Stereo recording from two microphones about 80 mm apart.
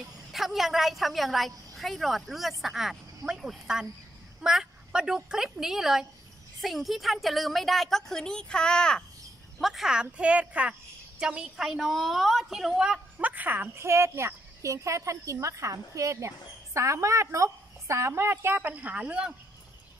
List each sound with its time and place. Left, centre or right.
0.3 s a woman's voice: centre
9.6 s a woman's voice: centre
13.2 s speech: right